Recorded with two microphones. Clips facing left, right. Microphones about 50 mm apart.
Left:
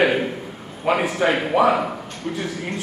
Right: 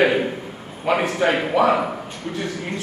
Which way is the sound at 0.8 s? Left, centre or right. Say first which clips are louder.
Even; centre.